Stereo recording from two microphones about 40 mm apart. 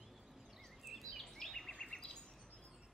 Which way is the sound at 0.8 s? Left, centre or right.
Centre.